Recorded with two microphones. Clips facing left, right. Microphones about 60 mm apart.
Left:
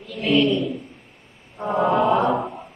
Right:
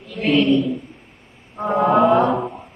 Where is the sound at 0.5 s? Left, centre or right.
Centre.